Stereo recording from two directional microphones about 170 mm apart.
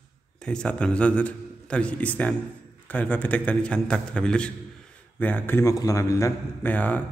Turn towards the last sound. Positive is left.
turn(degrees=10)  # may be behind; listen again after turning